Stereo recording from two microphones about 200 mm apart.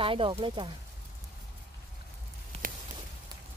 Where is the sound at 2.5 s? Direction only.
30° right (ahead or behind).